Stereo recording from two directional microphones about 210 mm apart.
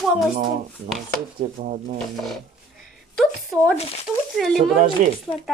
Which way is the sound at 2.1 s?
Centre (ahead or behind).